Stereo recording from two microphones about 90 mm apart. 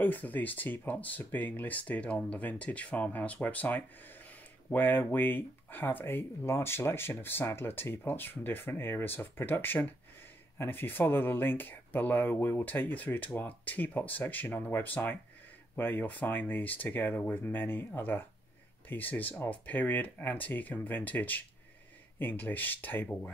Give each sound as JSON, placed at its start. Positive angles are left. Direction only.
{"t": 0.0, "sound": "speech", "side_deg": 20}